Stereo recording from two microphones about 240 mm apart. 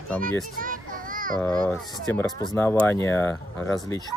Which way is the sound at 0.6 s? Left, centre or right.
Right.